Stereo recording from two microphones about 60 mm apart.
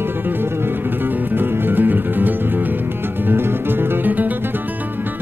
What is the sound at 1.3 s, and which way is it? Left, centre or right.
Music, right.